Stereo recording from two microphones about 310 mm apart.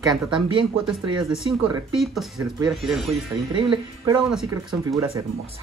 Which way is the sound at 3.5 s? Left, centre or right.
Centre.